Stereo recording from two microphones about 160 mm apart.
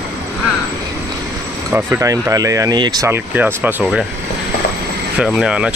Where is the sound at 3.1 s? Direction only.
15° right (ahead or behind).